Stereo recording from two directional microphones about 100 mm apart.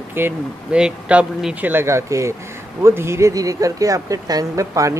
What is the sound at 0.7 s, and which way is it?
Speech, 10° right (ahead or behind).